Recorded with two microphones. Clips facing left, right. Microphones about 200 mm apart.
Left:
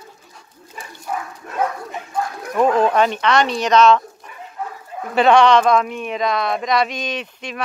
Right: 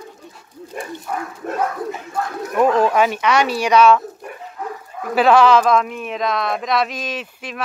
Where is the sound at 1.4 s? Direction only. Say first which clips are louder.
Right 7 dB; 45° right (ahead or behind).